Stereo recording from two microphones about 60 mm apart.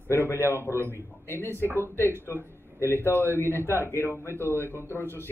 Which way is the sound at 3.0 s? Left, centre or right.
Left.